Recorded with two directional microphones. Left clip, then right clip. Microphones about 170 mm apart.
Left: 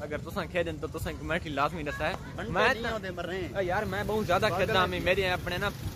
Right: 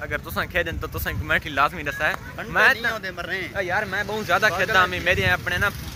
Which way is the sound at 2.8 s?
20° left (ahead or behind).